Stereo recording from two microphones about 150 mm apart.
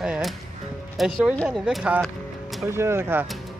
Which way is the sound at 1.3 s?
10° left (ahead or behind).